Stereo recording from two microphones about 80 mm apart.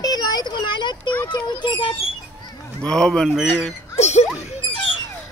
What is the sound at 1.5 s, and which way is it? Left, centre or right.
Speech, left.